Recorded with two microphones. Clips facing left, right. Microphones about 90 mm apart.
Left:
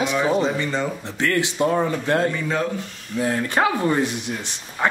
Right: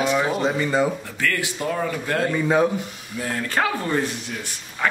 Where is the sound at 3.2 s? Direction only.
20° left (ahead or behind).